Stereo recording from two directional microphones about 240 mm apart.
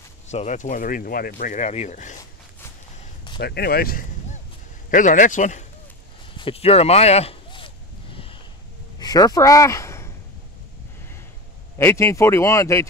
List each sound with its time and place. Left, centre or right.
0.3 s speech: left
3.3 s speech: left
6.3 s a sound: left
9.0 s speech: centre
11.8 s speech: centre